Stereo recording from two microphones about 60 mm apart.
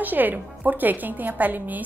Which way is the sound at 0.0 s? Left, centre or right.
Right.